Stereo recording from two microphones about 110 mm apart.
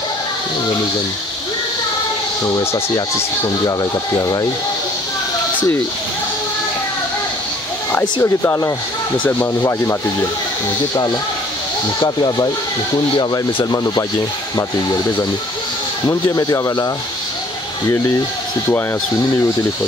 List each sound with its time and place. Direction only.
2.4 s speech: 25° left (ahead or behind)
4.2 s a man's voice: 35° left (ahead or behind)
8.2 s speech: 25° left (ahead or behind)
12.0 s a man's voice: 40° left (ahead or behind)
16.1 s a man's voice: 30° left (ahead or behind)